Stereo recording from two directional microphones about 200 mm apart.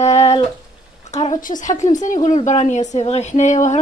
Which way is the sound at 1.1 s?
35° left (ahead or behind).